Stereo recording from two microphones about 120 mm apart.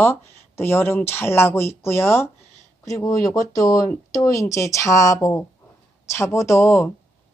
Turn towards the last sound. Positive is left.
turn(degrees=25)  # may be behind; listen again after turning